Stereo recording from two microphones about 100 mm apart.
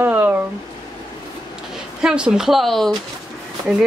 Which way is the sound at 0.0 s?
20° right (ahead or behind).